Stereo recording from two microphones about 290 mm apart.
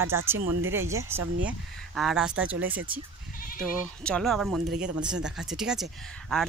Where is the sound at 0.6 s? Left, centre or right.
Right.